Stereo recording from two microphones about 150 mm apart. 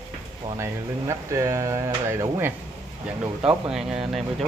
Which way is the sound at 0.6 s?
20° right (ahead or behind).